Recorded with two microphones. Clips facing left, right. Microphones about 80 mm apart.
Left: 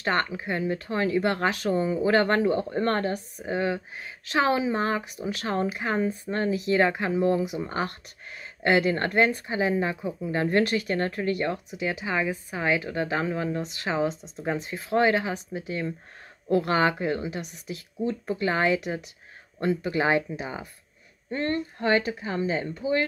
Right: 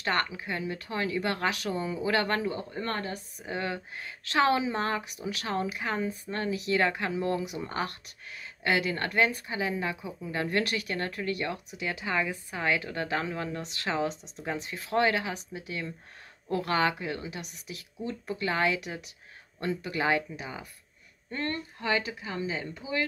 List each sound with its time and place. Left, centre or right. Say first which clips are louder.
0.0 s speech: left 3 dB; left
3.4 s speech: left 6 dB; left
8.6 s speech: left 6 dB; left